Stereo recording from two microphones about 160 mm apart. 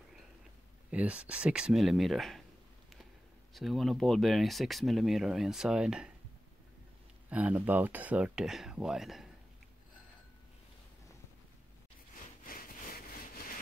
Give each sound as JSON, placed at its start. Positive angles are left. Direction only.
{"t": 0.9, "sound": "speech", "side_deg": -10}
{"t": 3.5, "sound": "speech", "side_deg": 0}
{"t": 7.2, "sound": "speech", "side_deg": -10}
{"t": 12.1, "sound": "a sound", "side_deg": 60}